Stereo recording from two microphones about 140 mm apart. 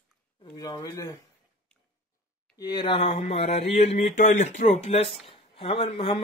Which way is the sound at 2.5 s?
30° left (ahead or behind).